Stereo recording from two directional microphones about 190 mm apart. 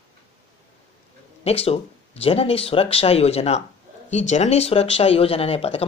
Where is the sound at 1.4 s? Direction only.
30° left (ahead or behind).